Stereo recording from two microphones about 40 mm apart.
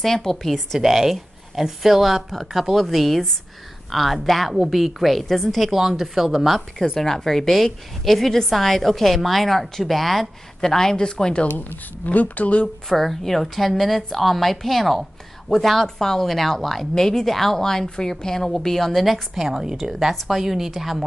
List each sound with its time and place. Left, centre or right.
0.0 s a woman's voice: centre
0.7 s a woman's voice: centre
5.7 s speech: centre
7.0 s a woman's voice: centre
11.4 s speech: left
12.8 s a woman's voice: centre